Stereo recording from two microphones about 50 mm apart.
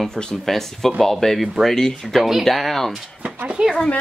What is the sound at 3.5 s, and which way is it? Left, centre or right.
Speech, centre.